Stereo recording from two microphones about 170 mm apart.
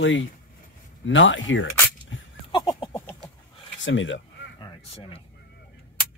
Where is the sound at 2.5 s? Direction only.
25° left (ahead or behind).